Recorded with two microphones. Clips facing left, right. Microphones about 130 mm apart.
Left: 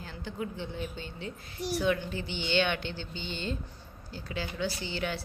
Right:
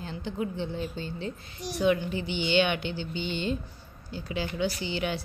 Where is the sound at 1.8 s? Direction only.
20° right (ahead or behind).